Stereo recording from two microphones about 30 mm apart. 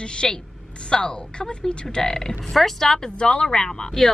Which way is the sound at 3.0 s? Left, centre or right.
Left.